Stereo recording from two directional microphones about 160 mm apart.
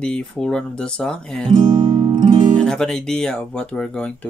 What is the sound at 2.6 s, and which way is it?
Speech, 5° left (ahead or behind).